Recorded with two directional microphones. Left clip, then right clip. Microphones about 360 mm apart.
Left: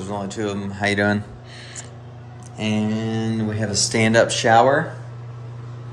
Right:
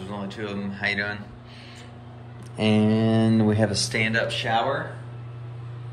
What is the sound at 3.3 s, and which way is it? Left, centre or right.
Speech, centre.